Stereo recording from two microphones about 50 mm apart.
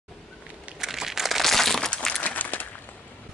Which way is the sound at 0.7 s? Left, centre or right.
Centre.